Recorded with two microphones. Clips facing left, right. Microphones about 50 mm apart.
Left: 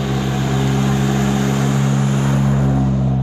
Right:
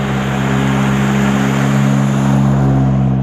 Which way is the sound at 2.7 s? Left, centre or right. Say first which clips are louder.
Right 4 dB; right.